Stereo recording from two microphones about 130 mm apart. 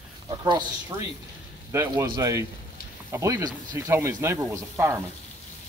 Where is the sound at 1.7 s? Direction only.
20° right (ahead or behind).